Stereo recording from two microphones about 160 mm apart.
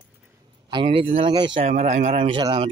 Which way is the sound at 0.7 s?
35° right (ahead or behind).